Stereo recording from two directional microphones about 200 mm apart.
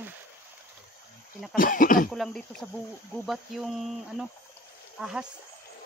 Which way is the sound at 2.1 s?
Centre (ahead or behind).